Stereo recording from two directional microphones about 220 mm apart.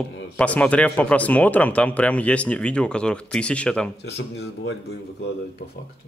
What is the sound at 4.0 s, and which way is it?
Speech, 50° left (ahead or behind).